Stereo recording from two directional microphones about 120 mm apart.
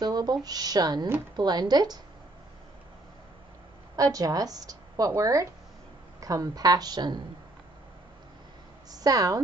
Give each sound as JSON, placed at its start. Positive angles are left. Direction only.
{"t": 0.0, "sound": "speech", "side_deg": -35}
{"t": 3.9, "sound": "speech", "side_deg": -30}
{"t": 8.9, "sound": "speech", "side_deg": -30}